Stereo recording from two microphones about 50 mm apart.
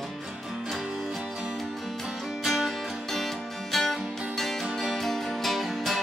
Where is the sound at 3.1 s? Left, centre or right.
Centre.